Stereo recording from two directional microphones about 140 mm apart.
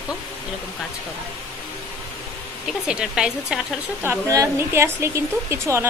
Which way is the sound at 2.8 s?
5° right (ahead or behind).